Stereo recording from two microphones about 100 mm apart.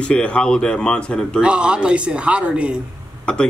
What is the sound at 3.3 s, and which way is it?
Speech, 10° left (ahead or behind).